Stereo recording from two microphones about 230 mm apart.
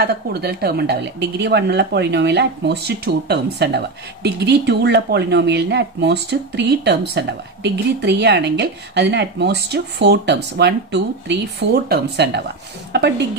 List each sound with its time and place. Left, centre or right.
0.0 s a woman's voice: right